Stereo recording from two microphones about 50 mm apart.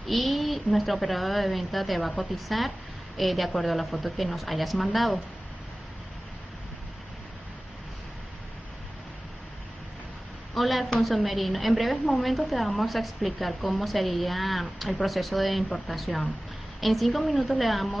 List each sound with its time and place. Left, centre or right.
0.0 s a woman's voice: centre
10.5 s a woman's voice: centre